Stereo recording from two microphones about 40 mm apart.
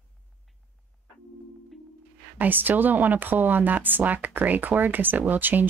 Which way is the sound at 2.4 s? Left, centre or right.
Right.